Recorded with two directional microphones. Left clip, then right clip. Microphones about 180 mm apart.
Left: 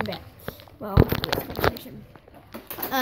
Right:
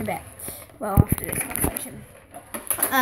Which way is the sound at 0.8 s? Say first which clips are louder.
Right 6 dB; 10° right (ahead or behind).